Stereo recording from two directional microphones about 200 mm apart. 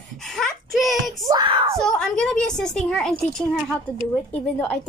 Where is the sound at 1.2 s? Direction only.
20° right (ahead or behind).